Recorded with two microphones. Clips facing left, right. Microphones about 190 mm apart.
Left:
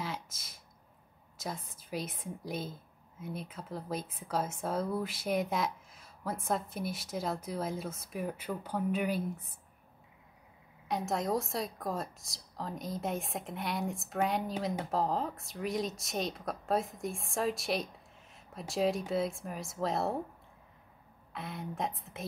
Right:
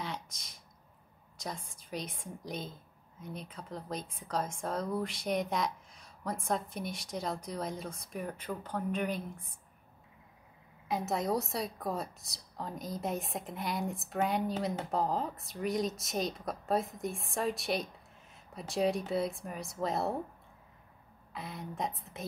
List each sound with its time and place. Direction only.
0.0 s a sound: 5° left (ahead or behind)
1.4 s speech: 5° left (ahead or behind)
10.9 s speech: centre (ahead or behind)
21.3 s speech: centre (ahead or behind)